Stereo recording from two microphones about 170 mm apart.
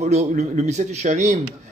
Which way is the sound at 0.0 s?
40° right (ahead or behind).